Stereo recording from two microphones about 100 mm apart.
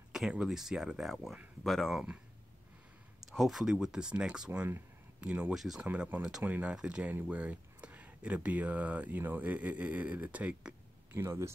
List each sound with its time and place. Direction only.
0.1 s speech: 5° right (ahead or behind)
3.3 s speech: centre (ahead or behind)
5.5 s speech: 5° right (ahead or behind)
5.8 s speech: 15° right (ahead or behind)
11.1 s speech: 25° right (ahead or behind)